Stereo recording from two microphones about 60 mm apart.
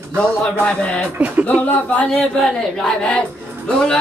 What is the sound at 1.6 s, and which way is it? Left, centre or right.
Speech, left.